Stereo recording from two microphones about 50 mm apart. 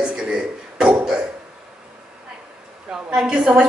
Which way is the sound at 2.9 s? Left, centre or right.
Centre.